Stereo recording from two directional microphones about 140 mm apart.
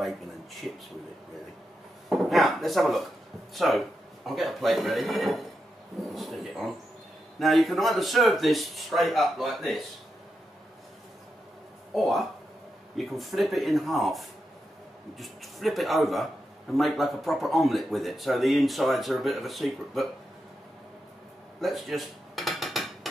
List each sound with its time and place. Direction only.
2.0 s chopping: centre (ahead or behind)
3.5 s speech: centre (ahead or behind)
11.9 s speech: centre (ahead or behind)
21.5 s dishes: centre (ahead or behind)